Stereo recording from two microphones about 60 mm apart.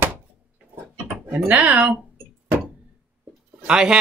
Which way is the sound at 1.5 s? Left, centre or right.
Right.